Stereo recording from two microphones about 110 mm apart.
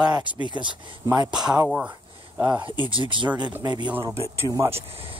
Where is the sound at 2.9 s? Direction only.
50° right (ahead or behind).